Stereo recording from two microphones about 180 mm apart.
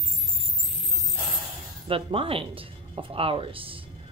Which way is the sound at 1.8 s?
30° right (ahead or behind).